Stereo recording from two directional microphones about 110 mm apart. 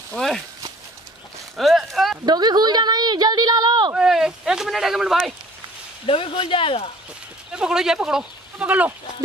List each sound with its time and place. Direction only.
0.1 s a sound: 5° left (ahead or behind)
1.6 s a sound: centre (ahead or behind)
2.2 s a woman's voice: 40° right (ahead or behind)
3.9 s speech: 5° right (ahead or behind)
6.0 s speech: 55° left (ahead or behind)
7.5 s speech: 5° right (ahead or behind)